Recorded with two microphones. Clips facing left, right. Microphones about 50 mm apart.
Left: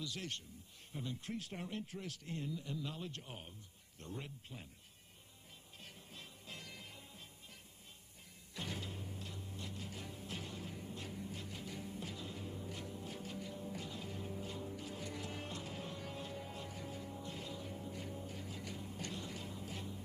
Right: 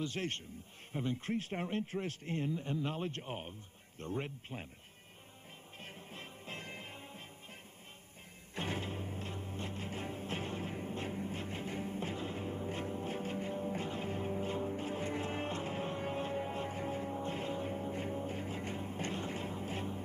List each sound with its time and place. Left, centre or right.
0.0 s a man's voice: right
5.8 s music: right
8.5 s music: right